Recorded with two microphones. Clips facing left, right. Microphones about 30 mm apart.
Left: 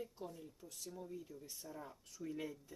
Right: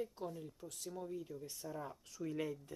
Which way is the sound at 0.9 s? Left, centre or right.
Right.